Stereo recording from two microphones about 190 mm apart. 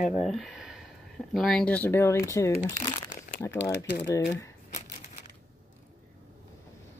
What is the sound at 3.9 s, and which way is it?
Speech, 70° left (ahead or behind).